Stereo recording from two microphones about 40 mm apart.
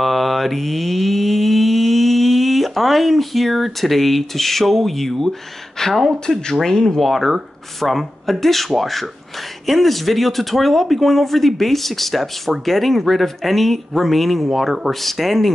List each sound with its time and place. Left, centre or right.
0.0 s mantra: centre
5.8 s speech: centre
6.2 s speech: centre